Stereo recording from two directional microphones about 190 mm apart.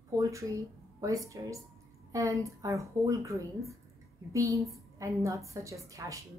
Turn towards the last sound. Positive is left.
turn(degrees=-15)  # may be behind; listen again after turning